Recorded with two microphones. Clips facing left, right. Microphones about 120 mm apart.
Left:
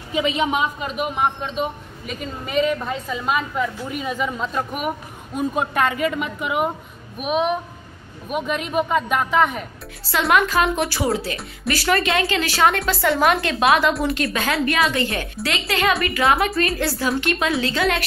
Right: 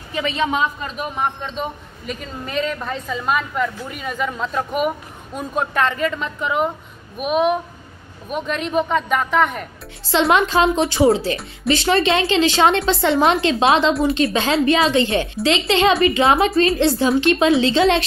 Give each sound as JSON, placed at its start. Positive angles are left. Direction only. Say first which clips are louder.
{"t": 0.1, "sound": "a man's voice", "louder": "even", "side_deg": 15}
{"t": 7.2, "sound": "a man's voice", "louder": "right 3 dB", "side_deg": 0}
{"t": 10.0, "sound": "a woman's voice", "louder": "right 2 dB", "side_deg": -25}